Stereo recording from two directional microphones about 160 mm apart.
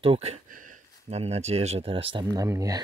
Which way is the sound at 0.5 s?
55° right (ahead or behind).